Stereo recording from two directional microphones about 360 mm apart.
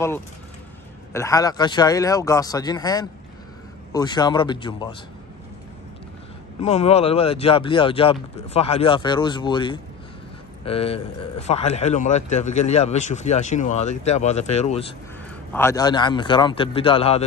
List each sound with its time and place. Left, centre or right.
1.1 s speech: centre
6.6 s a man's voice: centre